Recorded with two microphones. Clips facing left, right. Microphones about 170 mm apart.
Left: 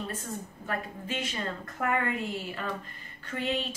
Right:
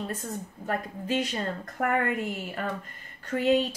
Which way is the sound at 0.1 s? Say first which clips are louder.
Right 3 dB; 45° right (ahead or behind).